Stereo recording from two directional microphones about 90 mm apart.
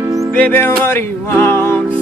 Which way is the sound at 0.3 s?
25° left (ahead or behind).